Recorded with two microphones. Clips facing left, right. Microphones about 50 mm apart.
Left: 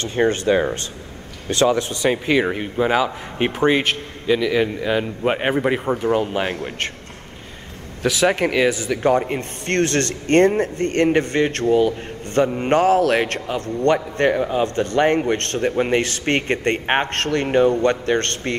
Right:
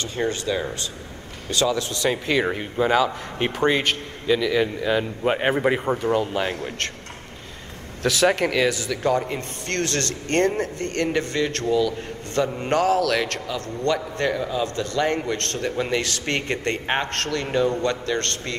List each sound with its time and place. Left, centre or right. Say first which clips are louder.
0.0 s a man's voice: left 6 dB; left
2.2 s speech: left 3 dB; centre
5.5 s speech: left 1 dB; centre
5.9 s speech: left 2 dB; centre
8.0 s a man's voice: left 2 dB; centre; by 18.6 s left